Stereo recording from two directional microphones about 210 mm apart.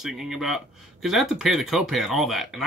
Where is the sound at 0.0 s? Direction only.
Centre (ahead or behind).